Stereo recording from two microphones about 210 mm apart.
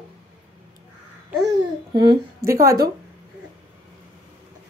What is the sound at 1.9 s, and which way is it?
Speech, 15° right (ahead or behind).